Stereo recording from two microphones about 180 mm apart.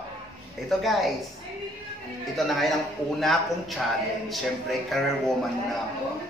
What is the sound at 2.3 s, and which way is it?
A woman's voice, centre (ahead or behind).